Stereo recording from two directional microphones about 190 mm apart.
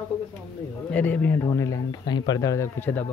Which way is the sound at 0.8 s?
5° left (ahead or behind).